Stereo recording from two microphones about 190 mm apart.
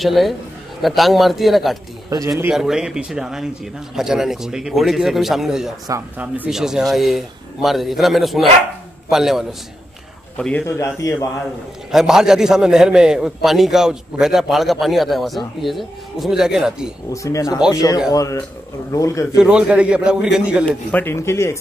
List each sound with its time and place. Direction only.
0.0 s a man's voice: centre (ahead or behind)
2.0 s a man's voice: 15° right (ahead or behind)
2.5 s a man's voice: 5° right (ahead or behind); by 11.2 s 15° left (ahead or behind)
11.9 s a man's voice: 5° right (ahead or behind)
17.1 s speech: 15° left (ahead or behind)
19.3 s a man's voice: 5° right (ahead or behind)
20.6 s speech: 10° left (ahead or behind)